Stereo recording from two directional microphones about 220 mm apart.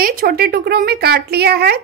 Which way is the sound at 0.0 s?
40° right (ahead or behind).